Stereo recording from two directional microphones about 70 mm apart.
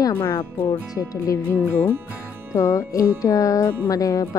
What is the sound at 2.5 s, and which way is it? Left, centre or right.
Speech, left.